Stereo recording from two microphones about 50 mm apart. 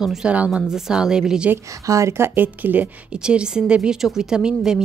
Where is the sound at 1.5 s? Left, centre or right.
Right.